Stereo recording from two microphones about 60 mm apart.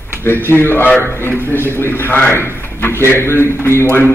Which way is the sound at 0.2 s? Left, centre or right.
Left.